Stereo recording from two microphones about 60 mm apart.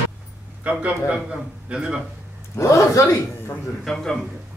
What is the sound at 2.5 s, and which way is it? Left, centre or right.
Speech, left.